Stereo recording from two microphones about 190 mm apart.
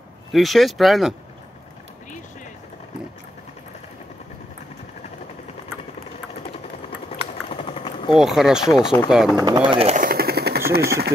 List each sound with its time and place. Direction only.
0.3 s speech: centre (ahead or behind)
7.1 s a sound: 30° left (ahead or behind)
8.2 s speech: centre (ahead or behind)
8.7 s speech: 20° left (ahead or behind)
9.1 s speech: centre (ahead or behind)
9.4 s speech: 25° right (ahead or behind)
9.9 s a sound: 50° right (ahead or behind)
10.7 s speech: 55° right (ahead or behind)